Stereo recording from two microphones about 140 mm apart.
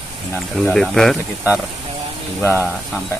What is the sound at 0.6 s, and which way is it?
Speech, centre (ahead or behind).